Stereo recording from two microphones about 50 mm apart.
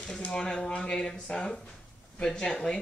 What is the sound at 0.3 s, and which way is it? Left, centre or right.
Speech, centre.